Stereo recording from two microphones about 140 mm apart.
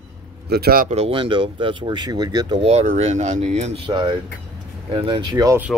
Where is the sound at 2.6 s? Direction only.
50° right (ahead or behind).